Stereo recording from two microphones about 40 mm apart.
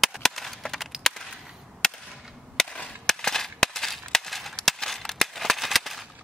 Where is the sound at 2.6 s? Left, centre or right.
Centre.